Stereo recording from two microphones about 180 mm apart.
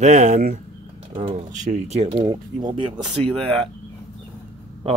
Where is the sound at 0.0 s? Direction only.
40° right (ahead or behind).